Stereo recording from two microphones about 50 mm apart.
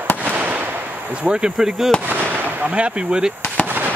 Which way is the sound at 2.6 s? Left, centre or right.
Right.